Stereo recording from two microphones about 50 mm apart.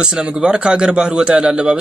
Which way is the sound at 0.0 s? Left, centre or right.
Centre.